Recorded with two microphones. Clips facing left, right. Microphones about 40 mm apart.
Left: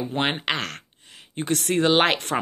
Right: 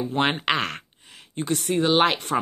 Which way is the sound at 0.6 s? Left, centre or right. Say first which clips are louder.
Right 3 dB; centre.